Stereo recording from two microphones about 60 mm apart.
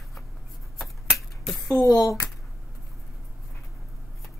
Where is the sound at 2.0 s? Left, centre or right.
Left.